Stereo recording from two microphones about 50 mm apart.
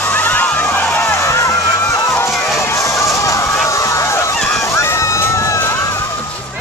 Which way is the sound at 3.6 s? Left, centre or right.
Left.